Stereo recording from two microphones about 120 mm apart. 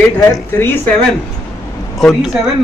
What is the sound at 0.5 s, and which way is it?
Speech, 20° left (ahead or behind).